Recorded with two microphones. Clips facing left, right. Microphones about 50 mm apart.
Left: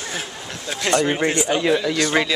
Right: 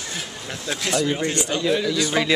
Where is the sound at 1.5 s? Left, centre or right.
Left.